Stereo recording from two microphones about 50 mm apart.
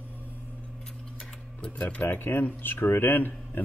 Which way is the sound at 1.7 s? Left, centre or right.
Left.